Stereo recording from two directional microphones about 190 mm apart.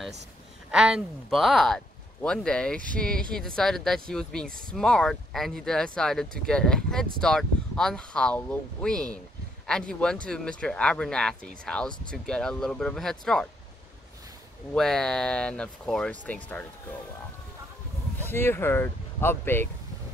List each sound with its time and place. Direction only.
0.7 s speech: 5° right (ahead or behind)
4.5 s speech: 50° right (ahead or behind)
4.7 s speech: 5° left (ahead or behind)
14.7 s speech: centre (ahead or behind)
18.3 s speech: 10° left (ahead or behind)